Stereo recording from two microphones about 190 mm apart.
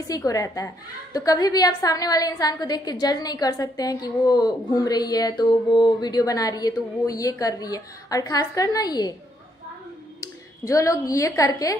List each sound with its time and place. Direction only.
0.1 s a woman's voice: 20° left (ahead or behind)
10.2 s a woman's voice: 15° left (ahead or behind)